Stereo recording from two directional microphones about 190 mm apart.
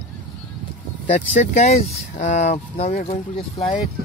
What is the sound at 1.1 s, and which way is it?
Speech, 40° left (ahead or behind).